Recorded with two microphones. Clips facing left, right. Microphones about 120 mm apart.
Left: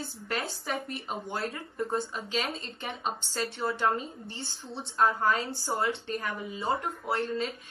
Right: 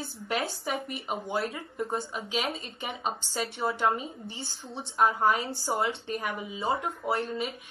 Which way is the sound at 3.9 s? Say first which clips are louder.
Even; 5° right (ahead or behind).